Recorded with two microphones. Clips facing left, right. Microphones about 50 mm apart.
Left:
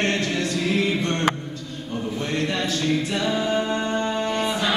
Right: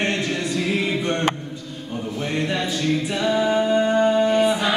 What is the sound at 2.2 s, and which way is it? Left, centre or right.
A capella, centre.